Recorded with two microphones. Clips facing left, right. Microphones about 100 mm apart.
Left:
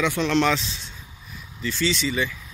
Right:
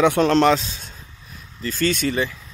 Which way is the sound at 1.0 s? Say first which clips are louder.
Even; 5° left (ahead or behind).